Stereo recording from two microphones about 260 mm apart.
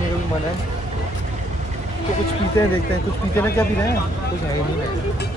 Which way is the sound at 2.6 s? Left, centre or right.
Centre.